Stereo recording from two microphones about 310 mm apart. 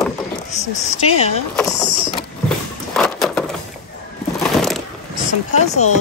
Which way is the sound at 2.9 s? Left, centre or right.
Centre.